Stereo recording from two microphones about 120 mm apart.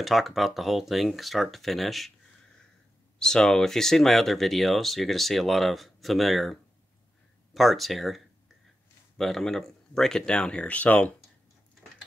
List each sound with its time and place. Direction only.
0.0 s speech: centre (ahead or behind)
3.2 s speech: 5° left (ahead or behind)